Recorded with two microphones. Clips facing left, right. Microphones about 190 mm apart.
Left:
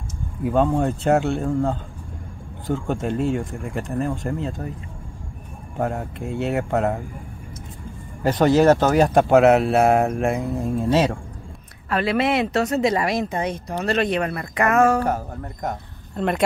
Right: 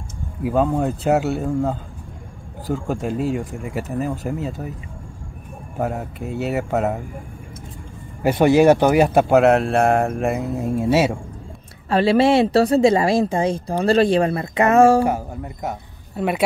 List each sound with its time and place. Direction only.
0.4 s speech: 5° right (ahead or behind)
5.8 s speech: centre (ahead or behind)
8.2 s speech: 10° right (ahead or behind)
11.9 s speech: 30° right (ahead or behind)
15.0 s speech: 10° right (ahead or behind)